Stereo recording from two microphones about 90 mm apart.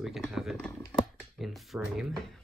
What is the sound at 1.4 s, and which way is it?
Speech, 5° right (ahead or behind).